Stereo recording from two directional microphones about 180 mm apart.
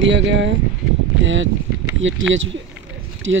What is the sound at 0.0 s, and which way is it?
Speech, 90° right.